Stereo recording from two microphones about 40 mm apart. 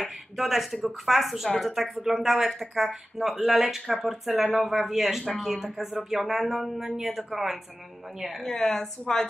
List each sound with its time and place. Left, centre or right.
0.4 s speech: centre
8.5 s speech: centre